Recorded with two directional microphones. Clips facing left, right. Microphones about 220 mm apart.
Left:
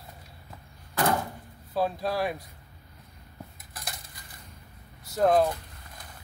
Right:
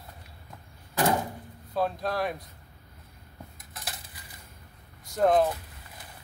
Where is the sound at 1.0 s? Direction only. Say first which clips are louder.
Right 1 dB; 15° right (ahead or behind).